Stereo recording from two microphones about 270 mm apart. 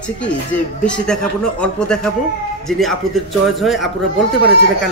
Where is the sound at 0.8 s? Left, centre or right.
Centre.